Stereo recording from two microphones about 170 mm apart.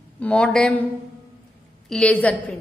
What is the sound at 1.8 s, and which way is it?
Speech, 5° left (ahead or behind).